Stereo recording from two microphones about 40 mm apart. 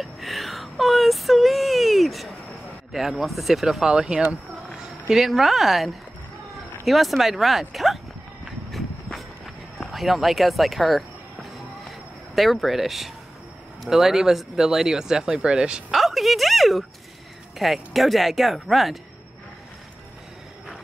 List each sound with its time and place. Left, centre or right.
0.0 s a sound: centre
2.9 s speech: centre
3.8 s speech: right
5.0 s speech: centre
6.9 s speech: centre
9.8 s speech: centre
12.4 s speech: centre
15.4 s speech: right
15.9 s a sound: centre
17.6 s speech: centre